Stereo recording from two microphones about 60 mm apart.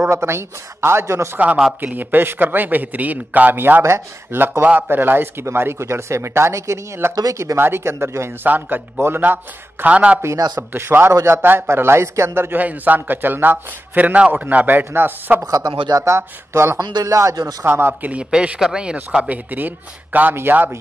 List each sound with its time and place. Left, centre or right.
0.1 s speech: right
1.8 s a man's voice: right
8.5 s a man's voice: right
9.8 s a man's voice: right
10.7 s a man's voice: right
12.5 s a man's voice: right
15.4 s speech: right
16.0 s speech: right
17.0 s speech: right
17.6 s a man's voice: right
18.1 s a man's voice: centre
19.2 s a man's voice: right